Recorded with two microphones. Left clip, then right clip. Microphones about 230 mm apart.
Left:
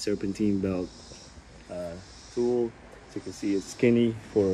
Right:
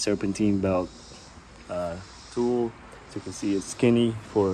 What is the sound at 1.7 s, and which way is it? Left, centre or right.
Speech, right.